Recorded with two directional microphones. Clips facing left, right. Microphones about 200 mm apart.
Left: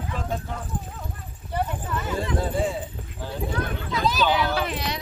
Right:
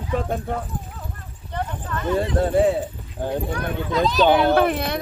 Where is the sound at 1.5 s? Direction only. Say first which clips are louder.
Left 1 dB; 10° left (ahead or behind).